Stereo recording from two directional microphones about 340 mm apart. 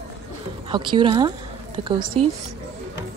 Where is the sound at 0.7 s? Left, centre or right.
Centre.